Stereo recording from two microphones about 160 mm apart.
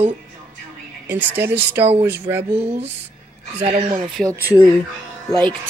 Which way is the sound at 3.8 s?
30° right (ahead or behind).